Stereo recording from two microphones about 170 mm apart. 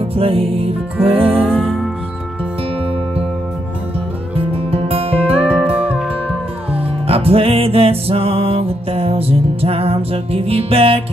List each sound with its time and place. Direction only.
0.1 s music: 35° right (ahead or behind)
1.6 s music: centre (ahead or behind)
4.4 s music: 35° right (ahead or behind)